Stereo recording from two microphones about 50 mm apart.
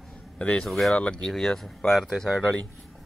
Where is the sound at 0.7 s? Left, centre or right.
Centre.